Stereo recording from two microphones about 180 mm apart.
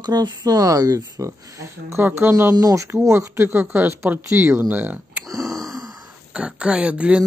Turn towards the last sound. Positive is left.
turn(degrees=-5)  # may be behind; listen again after turning